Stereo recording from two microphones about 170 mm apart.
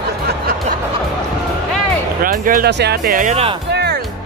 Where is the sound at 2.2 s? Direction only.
55° right (ahead or behind).